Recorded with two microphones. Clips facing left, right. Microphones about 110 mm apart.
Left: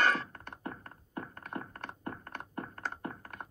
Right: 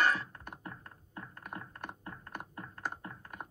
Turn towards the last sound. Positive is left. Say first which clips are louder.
# left 6 dB
turn(degrees=55)  # may be behind; listen again after turning